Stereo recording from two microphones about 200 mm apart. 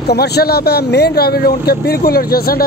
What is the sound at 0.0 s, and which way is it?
Speech, 55° left (ahead or behind).